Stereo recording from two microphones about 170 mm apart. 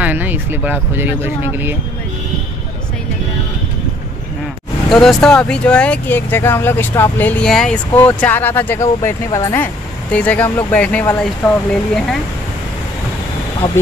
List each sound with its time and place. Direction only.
0.0 s speech: 10° right (ahead or behind)
4.8 s speech: centre (ahead or behind)